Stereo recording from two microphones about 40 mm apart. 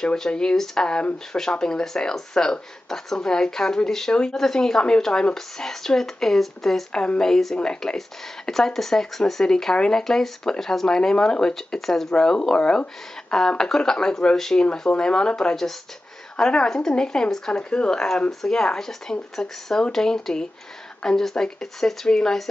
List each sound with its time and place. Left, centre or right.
0.0 s speech: centre
8.5 s speech: centre